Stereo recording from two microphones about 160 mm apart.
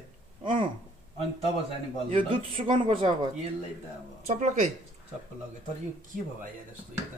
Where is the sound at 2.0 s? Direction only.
35° right (ahead or behind).